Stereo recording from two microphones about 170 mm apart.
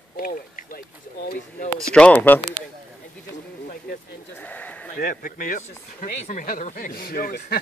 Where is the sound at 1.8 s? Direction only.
5° left (ahead or behind).